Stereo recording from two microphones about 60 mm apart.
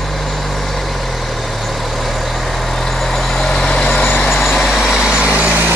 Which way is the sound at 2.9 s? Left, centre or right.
Centre.